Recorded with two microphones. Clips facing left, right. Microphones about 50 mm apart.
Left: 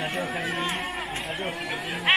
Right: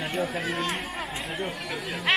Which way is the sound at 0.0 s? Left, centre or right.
Centre.